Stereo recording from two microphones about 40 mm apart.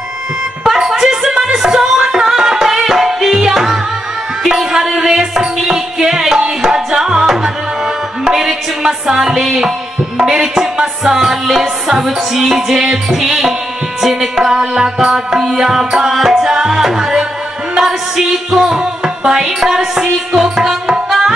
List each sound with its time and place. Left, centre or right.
0.7 s music: centre
8.3 s music: centre